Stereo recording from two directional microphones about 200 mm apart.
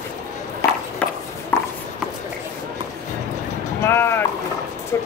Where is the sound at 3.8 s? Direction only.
10° left (ahead or behind).